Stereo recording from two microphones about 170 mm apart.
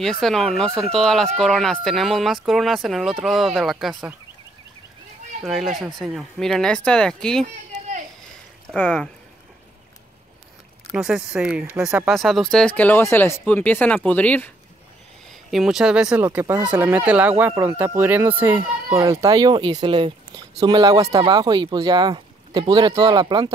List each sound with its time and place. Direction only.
0.0 s speech: centre (ahead or behind)
5.4 s speech: centre (ahead or behind)
8.7 s speech: 5° left (ahead or behind)
10.9 s speech: 5° right (ahead or behind)
15.5 s speech: centre (ahead or behind); by 23.5 s 25° right (ahead or behind)